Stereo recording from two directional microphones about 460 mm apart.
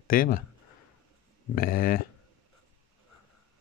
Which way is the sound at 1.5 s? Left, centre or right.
Centre.